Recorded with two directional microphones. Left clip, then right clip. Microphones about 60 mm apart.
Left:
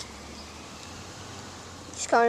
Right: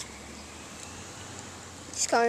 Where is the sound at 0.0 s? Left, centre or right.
Right.